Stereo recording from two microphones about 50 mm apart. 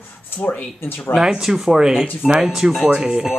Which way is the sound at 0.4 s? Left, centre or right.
Left.